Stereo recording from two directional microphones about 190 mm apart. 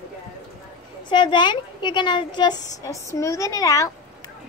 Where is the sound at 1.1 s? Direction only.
25° left (ahead or behind).